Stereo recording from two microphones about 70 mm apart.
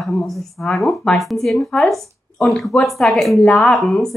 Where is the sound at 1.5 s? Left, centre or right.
Centre.